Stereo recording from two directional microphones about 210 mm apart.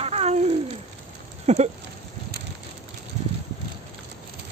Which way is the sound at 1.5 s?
35° right (ahead or behind).